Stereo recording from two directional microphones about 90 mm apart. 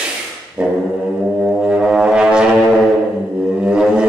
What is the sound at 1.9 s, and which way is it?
Music, 5° right (ahead or behind).